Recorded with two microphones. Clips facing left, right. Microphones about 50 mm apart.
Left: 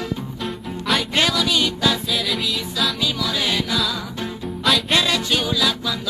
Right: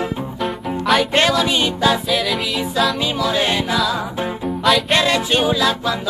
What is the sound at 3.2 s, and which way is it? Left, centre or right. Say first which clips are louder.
Music: right 5 dB; right.